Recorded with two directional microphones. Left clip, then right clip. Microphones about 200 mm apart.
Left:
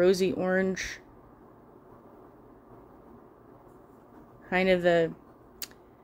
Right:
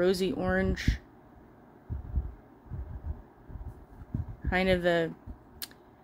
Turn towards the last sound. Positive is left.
turn(degrees=5)  # may be behind; listen again after turning